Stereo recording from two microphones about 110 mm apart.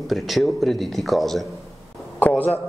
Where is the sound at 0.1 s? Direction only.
Centre (ahead or behind).